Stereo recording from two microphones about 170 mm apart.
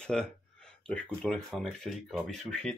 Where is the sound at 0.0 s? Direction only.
5° left (ahead or behind).